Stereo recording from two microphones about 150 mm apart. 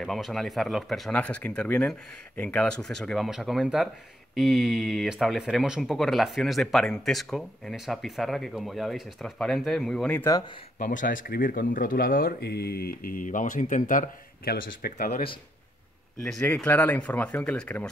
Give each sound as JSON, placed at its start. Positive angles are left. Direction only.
{"t": 0.0, "sound": "speech", "side_deg": 0}
{"t": 10.8, "sound": "speech", "side_deg": 60}
{"t": 16.2, "sound": "speech", "side_deg": 5}